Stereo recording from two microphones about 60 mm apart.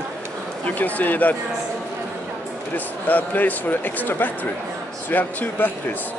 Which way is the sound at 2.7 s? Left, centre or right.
Left.